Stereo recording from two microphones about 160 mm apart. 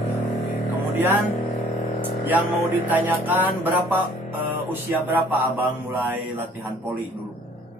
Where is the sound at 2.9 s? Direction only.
10° right (ahead or behind).